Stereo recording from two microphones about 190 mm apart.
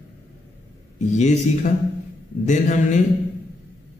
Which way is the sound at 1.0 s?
40° left (ahead or behind).